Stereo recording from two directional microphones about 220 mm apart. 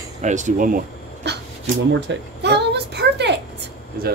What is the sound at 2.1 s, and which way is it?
Speech, 50° right (ahead or behind).